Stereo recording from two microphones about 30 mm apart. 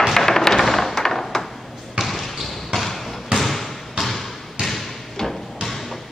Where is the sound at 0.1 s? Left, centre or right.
Centre.